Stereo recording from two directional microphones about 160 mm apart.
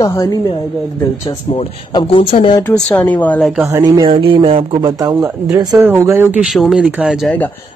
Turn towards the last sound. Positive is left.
turn(degrees=-5)  # may be behind; listen again after turning